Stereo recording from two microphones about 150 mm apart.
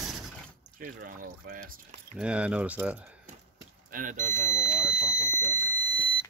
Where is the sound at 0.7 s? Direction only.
70° right (ahead or behind).